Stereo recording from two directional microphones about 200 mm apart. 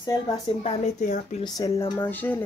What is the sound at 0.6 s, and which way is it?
Speech, 35° left (ahead or behind).